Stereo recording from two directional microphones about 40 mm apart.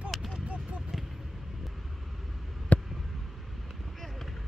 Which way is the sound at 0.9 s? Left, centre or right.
Centre.